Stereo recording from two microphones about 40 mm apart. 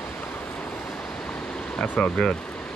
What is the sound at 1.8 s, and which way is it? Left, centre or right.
Speech, left.